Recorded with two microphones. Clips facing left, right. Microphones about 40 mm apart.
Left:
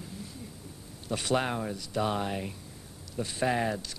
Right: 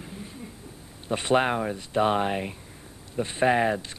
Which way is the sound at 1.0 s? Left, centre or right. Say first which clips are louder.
Right 6 dB; right.